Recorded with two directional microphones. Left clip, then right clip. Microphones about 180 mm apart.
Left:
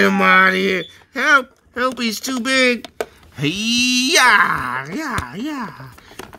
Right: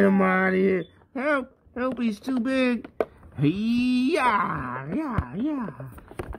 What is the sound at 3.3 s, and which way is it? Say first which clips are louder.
Speech: left 7 dB; 5° left (ahead or behind).